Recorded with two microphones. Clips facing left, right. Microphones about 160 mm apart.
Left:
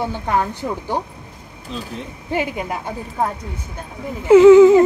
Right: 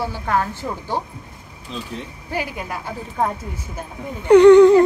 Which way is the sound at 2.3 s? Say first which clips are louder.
Left 4 dB; 20° left (ahead or behind).